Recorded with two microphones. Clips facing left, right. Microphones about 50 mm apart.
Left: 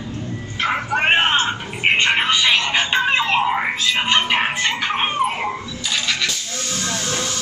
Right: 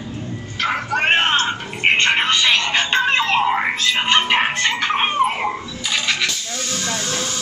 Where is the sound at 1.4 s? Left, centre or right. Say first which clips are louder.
Right 1 dB; centre.